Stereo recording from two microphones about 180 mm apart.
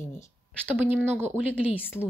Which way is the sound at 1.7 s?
10° left (ahead or behind).